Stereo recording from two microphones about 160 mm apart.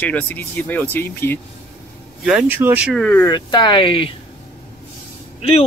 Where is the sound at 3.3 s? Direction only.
25° left (ahead or behind).